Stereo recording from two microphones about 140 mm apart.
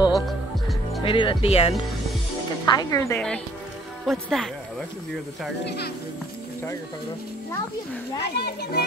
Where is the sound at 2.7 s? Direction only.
25° left (ahead or behind).